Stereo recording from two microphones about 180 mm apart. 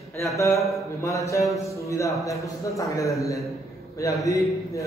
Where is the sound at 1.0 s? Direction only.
15° left (ahead or behind).